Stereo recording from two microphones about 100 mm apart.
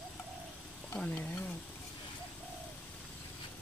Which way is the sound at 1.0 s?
15° left (ahead or behind).